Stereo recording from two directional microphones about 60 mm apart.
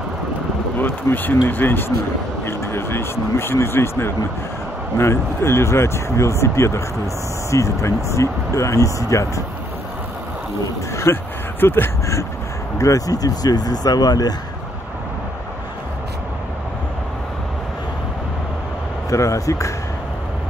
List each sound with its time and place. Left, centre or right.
0.7 s speech: left
11.1 s speech: left
11.6 s speech: left
12.7 s speech: left
19.0 s speech: left